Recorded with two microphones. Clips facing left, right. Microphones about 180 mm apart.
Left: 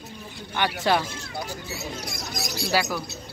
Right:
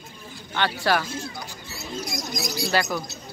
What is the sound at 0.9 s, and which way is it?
Speech, 20° left (ahead or behind).